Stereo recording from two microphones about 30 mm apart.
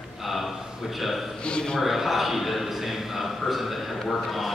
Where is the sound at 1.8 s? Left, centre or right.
Centre.